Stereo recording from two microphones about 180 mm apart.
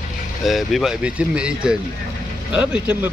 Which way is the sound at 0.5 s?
Centre (ahead or behind).